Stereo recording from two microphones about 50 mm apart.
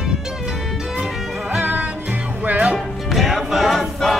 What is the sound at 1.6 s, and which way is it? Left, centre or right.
Music, right.